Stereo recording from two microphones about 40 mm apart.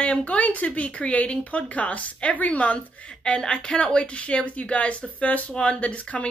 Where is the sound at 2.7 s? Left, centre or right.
Left.